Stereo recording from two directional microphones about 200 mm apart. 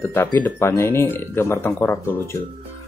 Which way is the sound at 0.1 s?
10° left (ahead or behind).